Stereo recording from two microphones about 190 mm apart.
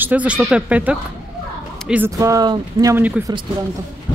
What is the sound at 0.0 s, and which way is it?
Speech, 10° right (ahead or behind).